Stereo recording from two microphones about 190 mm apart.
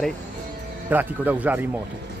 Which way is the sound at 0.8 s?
10° right (ahead or behind).